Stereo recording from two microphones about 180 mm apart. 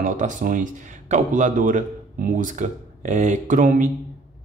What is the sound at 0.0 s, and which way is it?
Speech, 45° right (ahead or behind).